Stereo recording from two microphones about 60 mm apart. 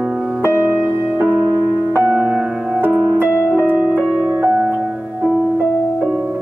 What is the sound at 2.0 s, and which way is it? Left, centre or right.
Music, right.